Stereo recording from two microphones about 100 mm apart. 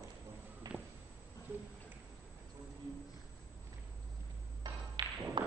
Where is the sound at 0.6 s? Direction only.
40° right (ahead or behind).